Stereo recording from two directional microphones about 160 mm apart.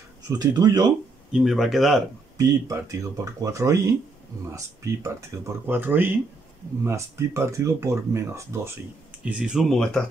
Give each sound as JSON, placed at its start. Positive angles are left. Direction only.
{"t": 0.3, "sound": "speech", "side_deg": -25}
{"t": 1.3, "sound": "speech", "side_deg": 0}
{"t": 2.3, "sound": "speech", "side_deg": -20}